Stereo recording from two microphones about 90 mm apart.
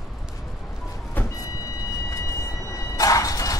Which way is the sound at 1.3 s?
40° left (ahead or behind).